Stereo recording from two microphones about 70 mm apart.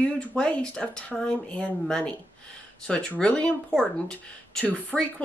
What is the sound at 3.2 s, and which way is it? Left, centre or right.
A woman's voice, centre.